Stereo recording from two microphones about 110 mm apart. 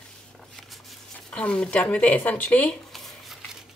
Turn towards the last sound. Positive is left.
turn(degrees=0)  # may be behind; listen again after turning